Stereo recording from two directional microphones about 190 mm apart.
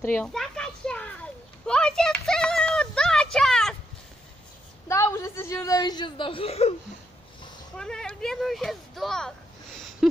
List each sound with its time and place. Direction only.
0.0 s a sound: 10° left (ahead or behind)
4.8 s a woman's voice: 15° left (ahead or behind); by 6.7 s 30° left (ahead or behind)
7.7 s speech: 5° left (ahead or behind)